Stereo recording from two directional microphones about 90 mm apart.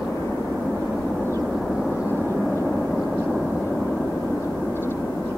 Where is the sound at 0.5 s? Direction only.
Centre (ahead or behind).